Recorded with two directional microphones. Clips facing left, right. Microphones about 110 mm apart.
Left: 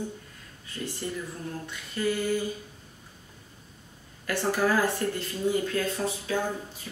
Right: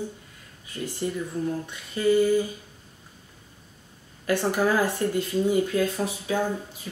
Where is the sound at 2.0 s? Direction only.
20° right (ahead or behind).